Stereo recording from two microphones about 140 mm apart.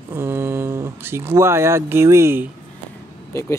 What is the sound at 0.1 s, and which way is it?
Speech, 20° right (ahead or behind).